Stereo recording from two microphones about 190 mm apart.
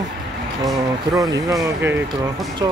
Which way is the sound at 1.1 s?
15° right (ahead or behind).